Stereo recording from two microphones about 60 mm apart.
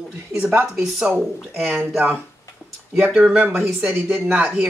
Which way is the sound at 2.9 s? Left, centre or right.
Right.